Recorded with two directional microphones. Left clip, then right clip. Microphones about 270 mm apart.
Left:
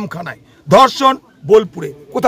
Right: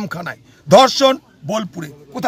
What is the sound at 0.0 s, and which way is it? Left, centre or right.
A man's voice, centre.